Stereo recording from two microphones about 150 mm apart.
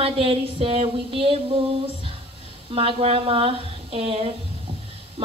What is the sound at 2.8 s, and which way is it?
A woman's voice, 40° right (ahead or behind).